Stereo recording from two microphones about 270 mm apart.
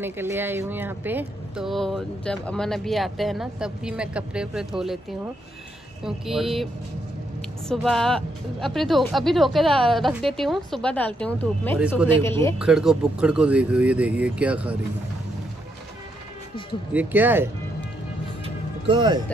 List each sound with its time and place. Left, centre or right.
0.0 s speech: centre
6.0 s a man's voice: centre
12.5 s speech: centre
16.9 s speech: centre
18.4 s music: centre